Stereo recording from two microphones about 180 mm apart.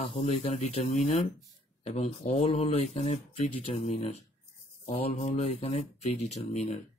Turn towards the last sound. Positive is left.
turn(degrees=40)  # may be behind; listen again after turning